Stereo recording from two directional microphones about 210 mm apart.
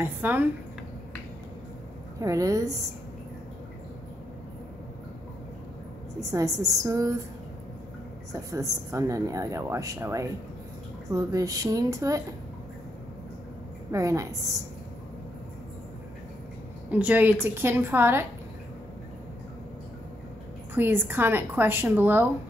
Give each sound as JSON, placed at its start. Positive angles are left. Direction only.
{"t": 0.0, "sound": "speech", "side_deg": -10}
{"t": 2.1, "sound": "a woman's voice", "side_deg": -15}
{"t": 6.3, "sound": "a woman's voice", "side_deg": -15}
{"t": 8.3, "sound": "a woman's voice", "side_deg": -15}
{"t": 13.9, "sound": "a woman's voice", "side_deg": -15}
{"t": 16.9, "sound": "a woman's voice", "side_deg": -5}
{"t": 20.7, "sound": "a woman's voice", "side_deg": -10}